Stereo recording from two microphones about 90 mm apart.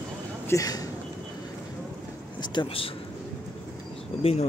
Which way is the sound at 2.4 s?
70° left (ahead or behind).